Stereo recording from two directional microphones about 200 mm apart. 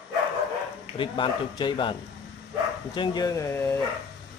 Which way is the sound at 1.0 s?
25° left (ahead or behind).